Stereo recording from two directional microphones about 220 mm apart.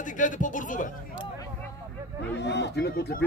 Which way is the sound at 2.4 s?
50° left (ahead or behind).